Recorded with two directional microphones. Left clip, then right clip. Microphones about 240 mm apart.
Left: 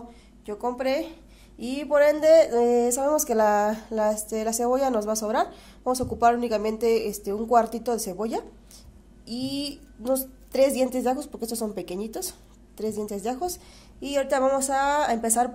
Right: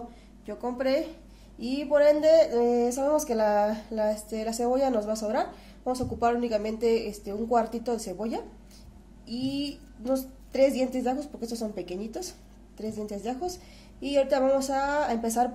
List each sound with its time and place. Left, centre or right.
0.5 s a woman's voice: left